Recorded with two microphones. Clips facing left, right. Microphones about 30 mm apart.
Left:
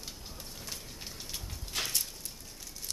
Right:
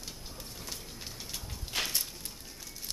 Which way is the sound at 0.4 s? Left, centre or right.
Centre.